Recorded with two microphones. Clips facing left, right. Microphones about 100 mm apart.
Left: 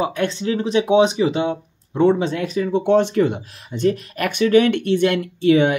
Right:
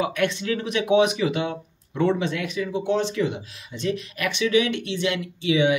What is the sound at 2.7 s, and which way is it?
Speech, 55° left (ahead or behind).